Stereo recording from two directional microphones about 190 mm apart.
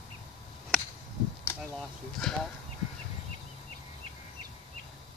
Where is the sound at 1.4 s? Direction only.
10° left (ahead or behind).